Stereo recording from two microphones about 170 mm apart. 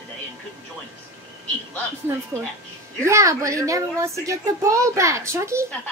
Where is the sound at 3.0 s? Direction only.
15° right (ahead or behind).